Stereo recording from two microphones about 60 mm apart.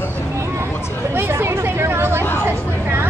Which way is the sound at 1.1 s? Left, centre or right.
Right.